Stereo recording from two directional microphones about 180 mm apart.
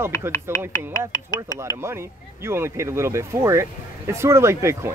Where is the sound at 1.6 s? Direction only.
15° right (ahead or behind).